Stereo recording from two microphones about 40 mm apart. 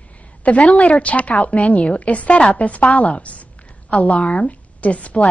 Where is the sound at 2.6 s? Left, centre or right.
Left.